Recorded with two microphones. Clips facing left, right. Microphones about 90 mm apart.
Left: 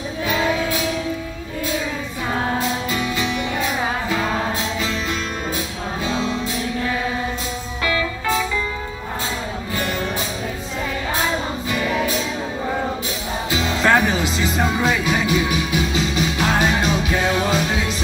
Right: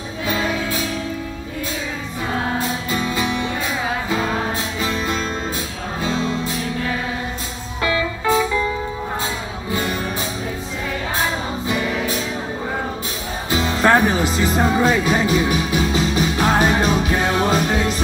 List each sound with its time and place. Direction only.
2.9 s music: 25° right (ahead or behind)
7.8 s music: 25° right (ahead or behind)
13.5 s music: 35° right (ahead or behind)